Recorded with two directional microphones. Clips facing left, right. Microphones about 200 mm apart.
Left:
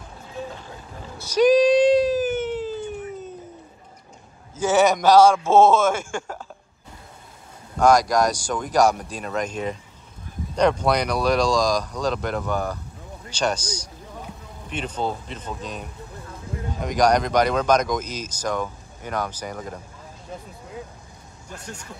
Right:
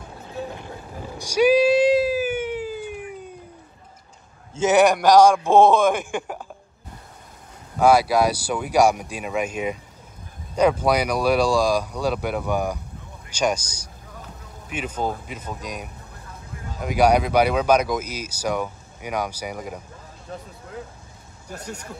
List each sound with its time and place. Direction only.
1.1 s a sound: 10° right (ahead or behind)
4.6 s speech: 15° right (ahead or behind)
7.8 s speech: 5° right (ahead or behind)
14.7 s speech: 10° right (ahead or behind)
21.5 s speech: 35° right (ahead or behind)